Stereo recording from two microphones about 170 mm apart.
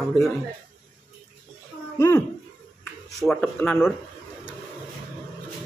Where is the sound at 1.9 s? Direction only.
20° left (ahead or behind).